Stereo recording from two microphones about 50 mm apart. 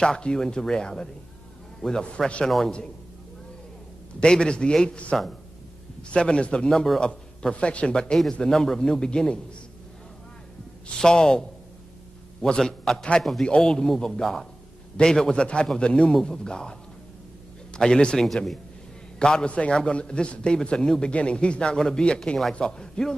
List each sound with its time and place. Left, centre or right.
0.0 s a man's voice: centre
2.1 s a man's voice: centre
2.4 s a man's voice: centre
4.2 s a man's voice: centre
6.1 s a man's voice: centre
6.7 s a man's voice: centre
7.0 s a man's voice: centre
11.0 s a man's voice: centre
17.7 s a man's voice: centre
19.1 s a man's voice: centre